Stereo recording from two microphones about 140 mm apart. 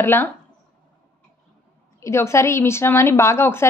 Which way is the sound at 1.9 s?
20° left (ahead or behind).